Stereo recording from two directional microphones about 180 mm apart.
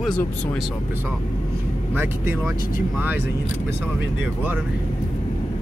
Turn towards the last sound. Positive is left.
turn(degrees=-10)  # may be behind; listen again after turning